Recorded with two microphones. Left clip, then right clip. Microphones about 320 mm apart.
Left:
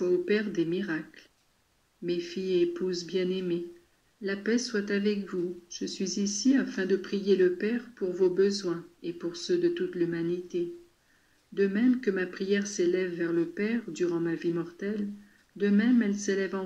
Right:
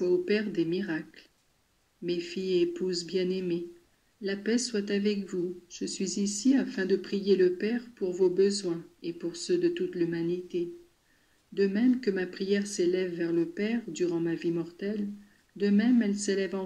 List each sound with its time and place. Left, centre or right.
0.0 s speech: centre
2.3 s speech: centre